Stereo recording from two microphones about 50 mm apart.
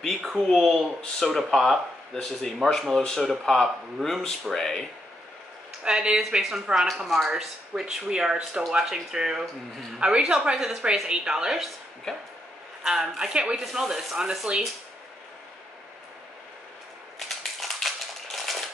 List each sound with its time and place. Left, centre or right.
0.0 s speech: centre
3.3 s speech: centre
5.9 s speech: centre
12.8 s speech: centre
13.3 s speech: centre
13.6 s speech: centre
17.4 s a sound: centre